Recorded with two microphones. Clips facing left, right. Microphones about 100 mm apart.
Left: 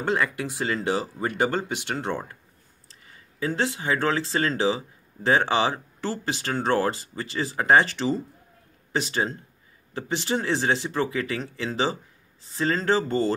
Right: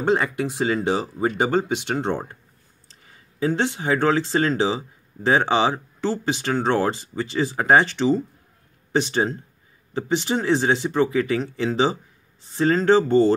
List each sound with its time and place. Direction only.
0.0 s speech: 20° right (ahead or behind)
3.3 s speech: 25° right (ahead or behind)